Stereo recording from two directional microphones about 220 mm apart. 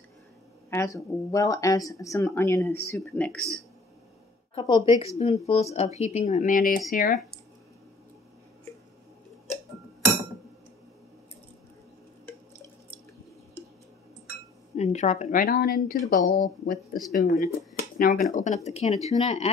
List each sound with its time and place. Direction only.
0.7 s speech: 15° left (ahead or behind)
4.6 s speech: 20° left (ahead or behind); by 7.2 s 40° left (ahead or behind)
14.8 s speech: 30° left (ahead or behind)